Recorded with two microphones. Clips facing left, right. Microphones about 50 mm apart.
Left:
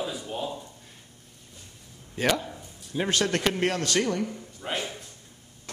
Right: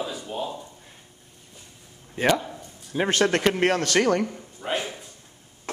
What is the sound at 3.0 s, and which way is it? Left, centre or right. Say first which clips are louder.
Speech: right 4 dB; right.